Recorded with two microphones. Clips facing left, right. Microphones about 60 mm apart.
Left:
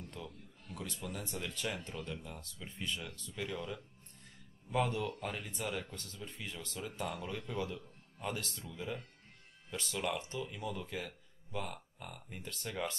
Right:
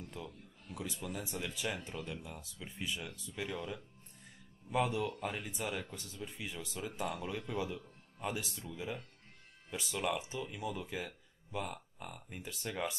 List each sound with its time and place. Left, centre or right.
0.0 s speech: centre